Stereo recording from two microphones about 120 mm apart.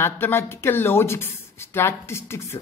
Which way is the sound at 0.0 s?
20° left (ahead or behind).